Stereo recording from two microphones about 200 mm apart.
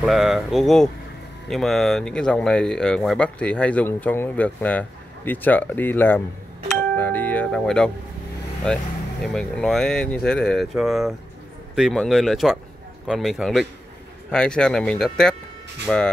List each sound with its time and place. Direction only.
0.0 s speech: centre (ahead or behind)
7.0 s music: 10° left (ahead or behind)
8.7 s speech: 5° left (ahead or behind)